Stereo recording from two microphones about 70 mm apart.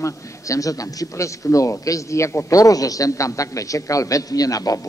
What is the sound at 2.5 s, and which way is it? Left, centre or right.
A man's voice, left.